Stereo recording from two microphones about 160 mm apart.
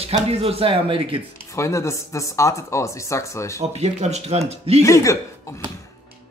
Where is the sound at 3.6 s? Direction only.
40° right (ahead or behind).